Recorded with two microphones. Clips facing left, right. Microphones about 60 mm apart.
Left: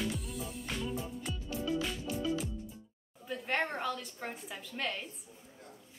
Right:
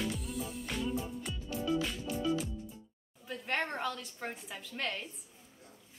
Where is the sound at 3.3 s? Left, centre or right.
Centre.